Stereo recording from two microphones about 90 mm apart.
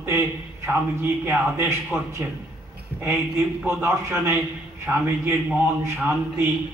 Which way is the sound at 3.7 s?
25° right (ahead or behind).